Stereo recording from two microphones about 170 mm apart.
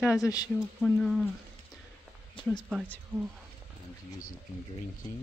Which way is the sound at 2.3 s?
25° left (ahead or behind).